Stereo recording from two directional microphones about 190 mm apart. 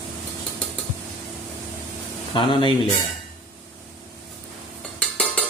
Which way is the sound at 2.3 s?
25° left (ahead or behind).